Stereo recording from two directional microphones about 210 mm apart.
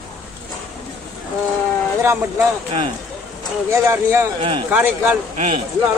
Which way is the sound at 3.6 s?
15° right (ahead or behind).